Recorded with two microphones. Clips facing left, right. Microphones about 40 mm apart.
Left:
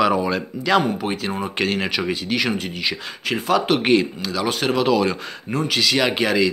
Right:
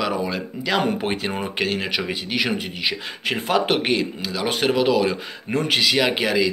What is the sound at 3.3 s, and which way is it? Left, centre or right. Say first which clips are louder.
Speech: left 2 dB; right.